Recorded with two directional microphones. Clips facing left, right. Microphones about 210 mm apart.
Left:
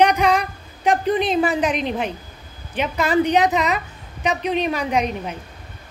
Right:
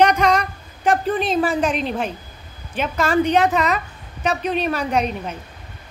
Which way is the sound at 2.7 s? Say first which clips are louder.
Even; 15° left (ahead or behind).